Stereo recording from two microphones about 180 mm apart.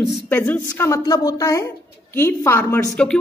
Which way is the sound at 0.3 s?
10° left (ahead or behind).